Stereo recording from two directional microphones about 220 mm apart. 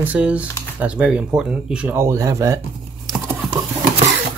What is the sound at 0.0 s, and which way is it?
Speech, 5° right (ahead or behind).